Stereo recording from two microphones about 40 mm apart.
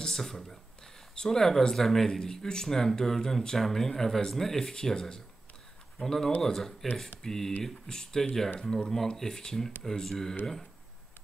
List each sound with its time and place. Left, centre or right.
0.0 s speech: centre
1.8 s speech: centre